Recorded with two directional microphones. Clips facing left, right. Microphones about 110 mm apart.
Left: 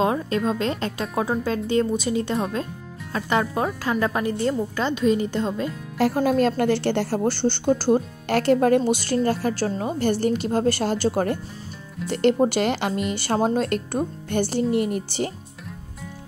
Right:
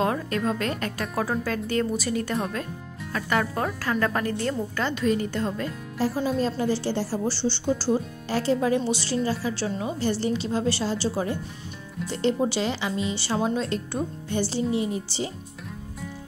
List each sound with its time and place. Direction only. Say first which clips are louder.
0.0 s a woman's voice: left 3 dB; 20° left (ahead or behind)
5.9 s a woman's voice: left 5 dB; 70° left (ahead or behind)